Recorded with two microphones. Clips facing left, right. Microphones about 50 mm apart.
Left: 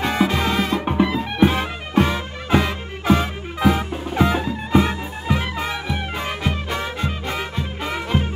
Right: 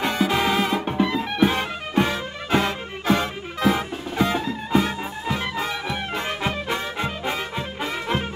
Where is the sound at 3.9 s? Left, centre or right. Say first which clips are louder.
Left 3 dB; centre.